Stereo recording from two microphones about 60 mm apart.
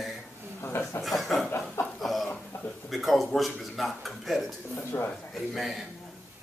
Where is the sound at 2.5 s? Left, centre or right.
Left.